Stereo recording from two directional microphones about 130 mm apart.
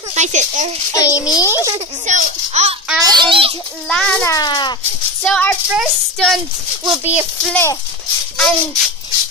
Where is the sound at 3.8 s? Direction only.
10° left (ahead or behind).